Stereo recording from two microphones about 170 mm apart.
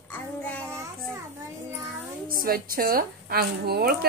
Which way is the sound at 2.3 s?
60° right (ahead or behind).